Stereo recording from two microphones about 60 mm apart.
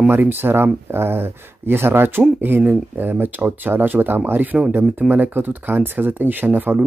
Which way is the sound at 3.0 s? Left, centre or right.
Right.